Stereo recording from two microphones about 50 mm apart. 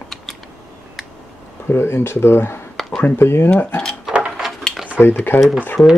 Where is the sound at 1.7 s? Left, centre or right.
Left.